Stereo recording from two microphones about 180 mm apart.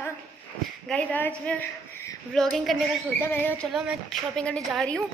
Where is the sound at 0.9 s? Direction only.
5° left (ahead or behind).